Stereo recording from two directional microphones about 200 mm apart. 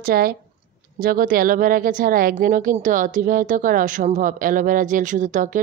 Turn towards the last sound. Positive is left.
turn(degrees=-40)  # may be behind; listen again after turning